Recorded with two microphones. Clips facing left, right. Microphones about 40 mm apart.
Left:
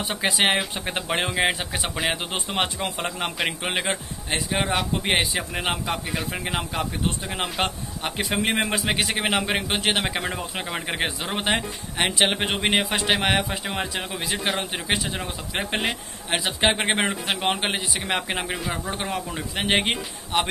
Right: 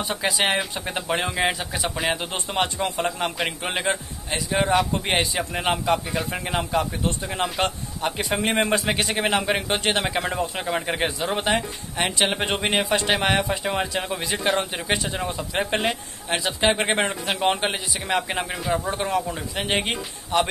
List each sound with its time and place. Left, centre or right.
0.1 s speech: left
2.8 s a man's voice: centre
4.6 s a man's voice: centre
16.3 s a man's voice: centre
19.5 s speech: left